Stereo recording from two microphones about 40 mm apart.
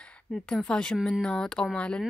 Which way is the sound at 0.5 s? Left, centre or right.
Left.